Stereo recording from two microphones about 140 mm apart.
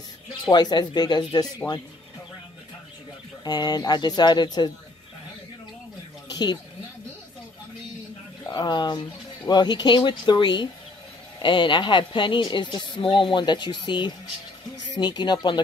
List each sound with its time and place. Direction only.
0.3 s a woman's voice: 30° left (ahead or behind)
3.4 s speech: 30° left (ahead or behind)
6.2 s a sound: 30° left (ahead or behind)
8.5 s a woman's voice: 30° left (ahead or behind)